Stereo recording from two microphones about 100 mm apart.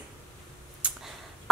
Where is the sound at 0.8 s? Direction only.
10° right (ahead or behind).